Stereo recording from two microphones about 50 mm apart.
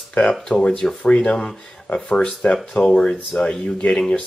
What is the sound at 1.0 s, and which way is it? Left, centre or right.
Speech, centre.